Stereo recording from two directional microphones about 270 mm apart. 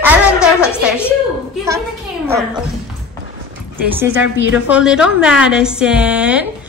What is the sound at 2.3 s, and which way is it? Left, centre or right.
Speech, centre.